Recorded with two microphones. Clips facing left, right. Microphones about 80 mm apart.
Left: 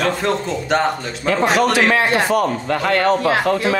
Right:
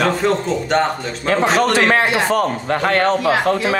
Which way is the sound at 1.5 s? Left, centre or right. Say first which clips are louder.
Even; centre.